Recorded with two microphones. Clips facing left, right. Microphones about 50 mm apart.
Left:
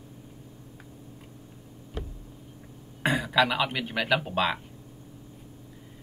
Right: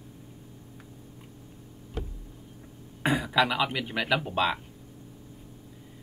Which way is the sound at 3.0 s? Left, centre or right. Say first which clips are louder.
Left 1 dB; centre.